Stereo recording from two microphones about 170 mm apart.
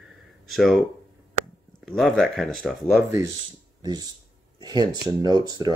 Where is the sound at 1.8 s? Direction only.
Centre (ahead or behind).